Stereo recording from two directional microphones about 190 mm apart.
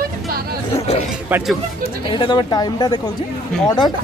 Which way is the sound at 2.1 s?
25° left (ahead or behind).